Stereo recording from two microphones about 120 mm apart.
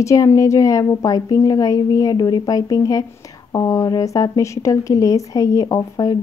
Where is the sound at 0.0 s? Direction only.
25° left (ahead or behind).